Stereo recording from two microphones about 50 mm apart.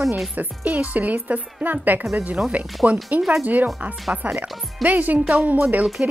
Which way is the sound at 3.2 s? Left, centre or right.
Centre.